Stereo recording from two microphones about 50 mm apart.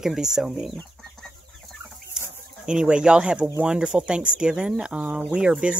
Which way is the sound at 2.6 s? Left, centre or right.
Centre.